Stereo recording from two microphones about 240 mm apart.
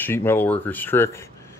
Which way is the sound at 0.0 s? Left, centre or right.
Centre.